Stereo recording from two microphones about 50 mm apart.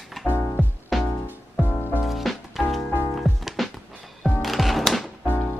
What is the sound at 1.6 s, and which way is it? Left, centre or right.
Music, left.